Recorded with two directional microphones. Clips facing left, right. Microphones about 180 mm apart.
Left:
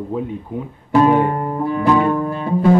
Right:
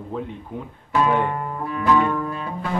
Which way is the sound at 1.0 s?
40° left (ahead or behind).